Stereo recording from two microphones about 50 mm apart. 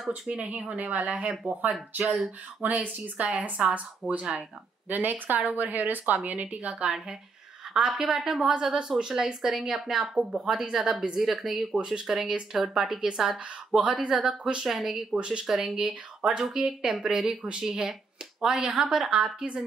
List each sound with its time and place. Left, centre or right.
0.1 s speech: right
7.9 s speech: centre
13.7 s speech: right; by 15.0 s centre
15.1 s speech: centre
19.0 s speech: right